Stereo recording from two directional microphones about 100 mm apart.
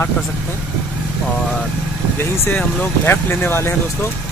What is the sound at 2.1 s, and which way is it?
Speech, 25° left (ahead or behind).